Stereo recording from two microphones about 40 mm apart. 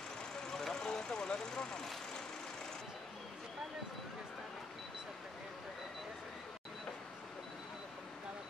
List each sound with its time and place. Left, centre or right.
0.5 s vehicle: centre